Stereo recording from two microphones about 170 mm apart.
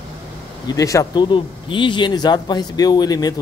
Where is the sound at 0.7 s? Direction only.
20° left (ahead or behind).